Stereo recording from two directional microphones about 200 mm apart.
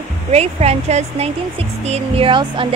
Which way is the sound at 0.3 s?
30° right (ahead or behind).